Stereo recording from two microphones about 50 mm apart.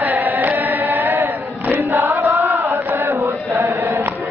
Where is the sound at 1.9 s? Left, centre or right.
Right.